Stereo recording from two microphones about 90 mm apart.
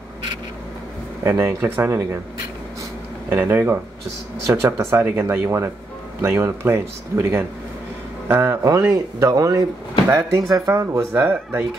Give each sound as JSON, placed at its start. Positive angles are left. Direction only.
{"t": 1.2, "sound": "speech", "side_deg": -30}
{"t": 3.3, "sound": "speech", "side_deg": -25}
{"t": 8.9, "sound": "speech", "side_deg": -40}